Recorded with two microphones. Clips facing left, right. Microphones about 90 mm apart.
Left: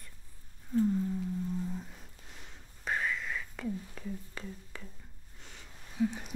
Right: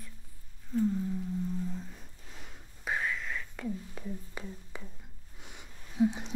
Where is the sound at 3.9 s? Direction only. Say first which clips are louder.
Right 1 dB; 15° right (ahead or behind).